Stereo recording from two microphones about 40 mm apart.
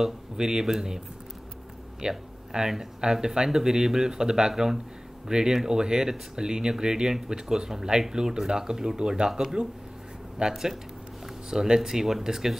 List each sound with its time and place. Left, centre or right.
0.0 s speech: centre